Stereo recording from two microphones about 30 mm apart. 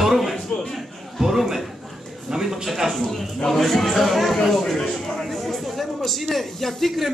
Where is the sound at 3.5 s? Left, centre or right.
Centre.